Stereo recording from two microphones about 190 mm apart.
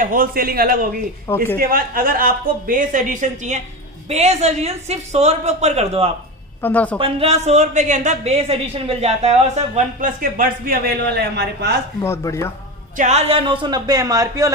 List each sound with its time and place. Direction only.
0.0 s speech: 45° right (ahead or behind)
1.3 s speech: 15° left (ahead or behind)
1.6 s a woman's voice: 50° right (ahead or behind); by 6.1 s 35° right (ahead or behind)
6.6 s speech: 10° left (ahead or behind)
7.0 s a woman's voice: 30° right (ahead or behind); by 11.8 s 60° right (ahead or behind)
12.0 s speech: 15° left (ahead or behind)
12.9 s a man's voice: 35° right (ahead or behind); by 14.5 s 20° right (ahead or behind)